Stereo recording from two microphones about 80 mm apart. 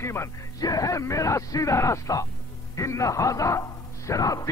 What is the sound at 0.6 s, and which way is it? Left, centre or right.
Speech, left.